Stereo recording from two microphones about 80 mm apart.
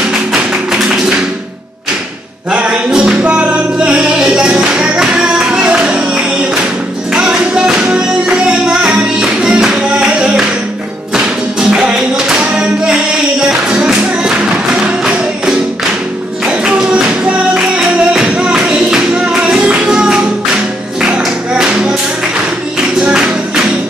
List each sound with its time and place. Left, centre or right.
0.1 s music: centre
2.5 s music: centre
22.9 s music: centre